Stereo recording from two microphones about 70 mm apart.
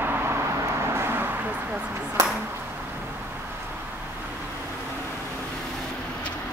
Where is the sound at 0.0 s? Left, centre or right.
Right.